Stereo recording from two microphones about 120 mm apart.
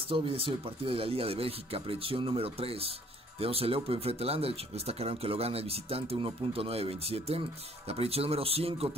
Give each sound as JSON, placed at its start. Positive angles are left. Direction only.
{"t": 0.1, "sound": "speech", "side_deg": -50}